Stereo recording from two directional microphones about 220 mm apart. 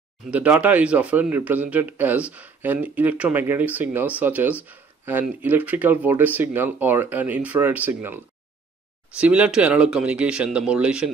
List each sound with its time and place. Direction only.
0.3 s speech: 5° right (ahead or behind)
9.2 s speech: 5° right (ahead or behind)